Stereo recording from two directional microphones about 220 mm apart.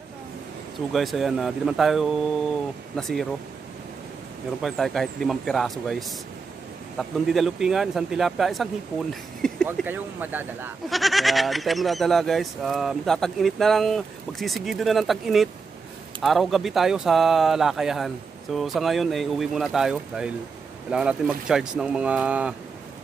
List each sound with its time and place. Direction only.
0.9 s speech: centre (ahead or behind)
4.6 s speech: centre (ahead or behind)
9.7 s speech: 10° right (ahead or behind)